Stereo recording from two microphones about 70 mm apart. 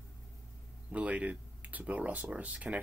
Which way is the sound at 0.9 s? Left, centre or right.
Centre.